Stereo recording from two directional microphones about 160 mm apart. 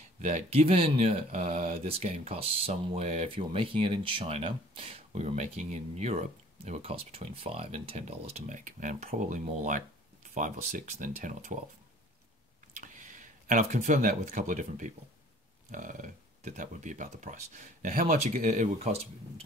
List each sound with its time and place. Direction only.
0.2 s speech: 45° right (ahead or behind)
12.8 s speech: 55° right (ahead or behind)